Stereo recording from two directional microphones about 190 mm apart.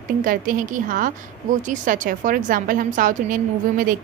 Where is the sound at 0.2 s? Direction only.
45° right (ahead or behind).